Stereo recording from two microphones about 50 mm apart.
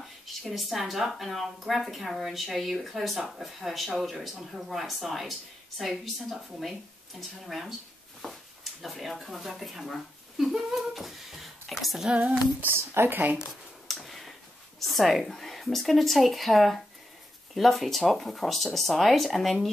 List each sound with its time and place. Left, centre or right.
0.3 s a woman's voice: centre
8.2 s speech: centre
8.8 s speech: centre
12.7 s speech: right
13.8 s tick-tock: centre
14.8 s a woman's voice: centre